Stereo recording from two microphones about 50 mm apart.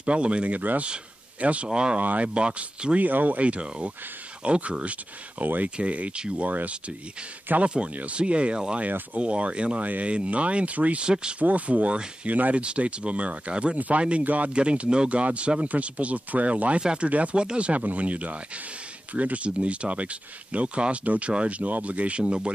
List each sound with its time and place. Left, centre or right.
0.0 s speech: right
2.0 s speech: right
2.2 s speech: right
3.0 s speech: right
5.4 s speech: right
5.8 s speech: right